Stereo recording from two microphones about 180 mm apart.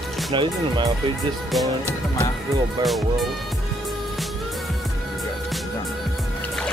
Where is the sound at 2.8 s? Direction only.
Centre (ahead or behind).